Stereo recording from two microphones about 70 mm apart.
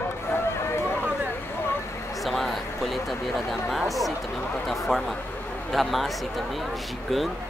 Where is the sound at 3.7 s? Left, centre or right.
Centre.